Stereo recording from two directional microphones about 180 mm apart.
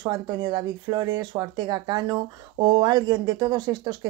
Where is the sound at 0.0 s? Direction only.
25° right (ahead or behind).